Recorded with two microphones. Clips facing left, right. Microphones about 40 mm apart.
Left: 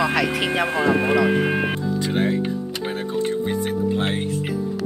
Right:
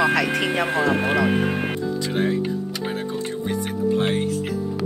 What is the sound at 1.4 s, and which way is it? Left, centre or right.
Music, left.